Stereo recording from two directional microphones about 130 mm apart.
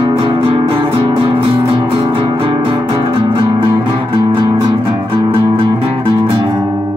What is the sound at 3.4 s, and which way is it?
Music, 30° right (ahead or behind).